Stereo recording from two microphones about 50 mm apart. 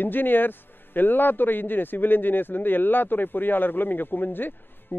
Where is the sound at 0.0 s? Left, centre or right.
Left.